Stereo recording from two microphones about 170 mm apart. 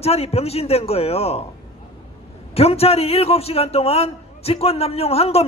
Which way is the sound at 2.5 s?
35° left (ahead or behind).